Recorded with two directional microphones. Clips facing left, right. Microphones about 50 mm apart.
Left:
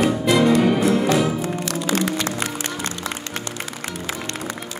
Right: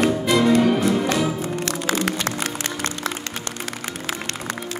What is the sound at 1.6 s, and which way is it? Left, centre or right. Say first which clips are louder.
Music: right 1 dB; right.